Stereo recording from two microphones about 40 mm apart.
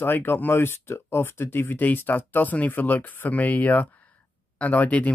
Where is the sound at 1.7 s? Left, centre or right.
Left.